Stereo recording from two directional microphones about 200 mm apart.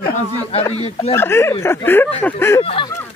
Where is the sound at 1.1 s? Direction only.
10° left (ahead or behind).